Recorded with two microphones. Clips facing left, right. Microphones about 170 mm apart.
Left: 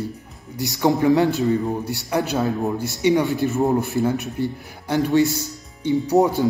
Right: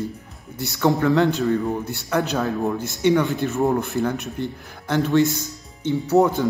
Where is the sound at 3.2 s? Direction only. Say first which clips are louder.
Left 1 dB; centre (ahead or behind); by 6.3 s 15° left (ahead or behind).